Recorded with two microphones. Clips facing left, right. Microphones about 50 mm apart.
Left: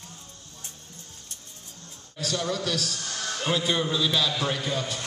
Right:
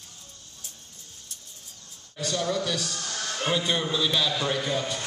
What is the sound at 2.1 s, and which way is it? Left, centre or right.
A man's voice, centre.